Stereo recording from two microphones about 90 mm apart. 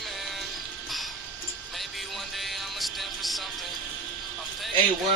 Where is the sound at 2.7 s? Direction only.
Centre (ahead or behind).